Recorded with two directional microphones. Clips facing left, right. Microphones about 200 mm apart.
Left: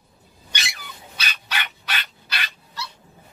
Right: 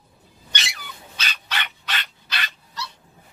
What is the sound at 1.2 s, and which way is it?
Dog, 10° left (ahead or behind).